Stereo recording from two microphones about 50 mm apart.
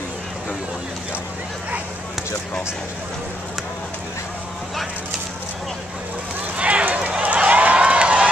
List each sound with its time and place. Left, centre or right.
6.6 s run: right